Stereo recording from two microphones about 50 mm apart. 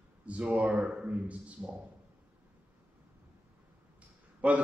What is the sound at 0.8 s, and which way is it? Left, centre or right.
Speech, centre.